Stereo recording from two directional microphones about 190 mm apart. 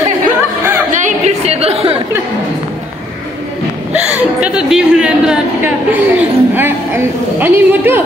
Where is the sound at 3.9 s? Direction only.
5° right (ahead or behind).